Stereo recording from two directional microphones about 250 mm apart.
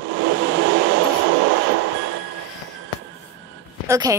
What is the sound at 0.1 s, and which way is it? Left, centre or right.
Vehicle, right.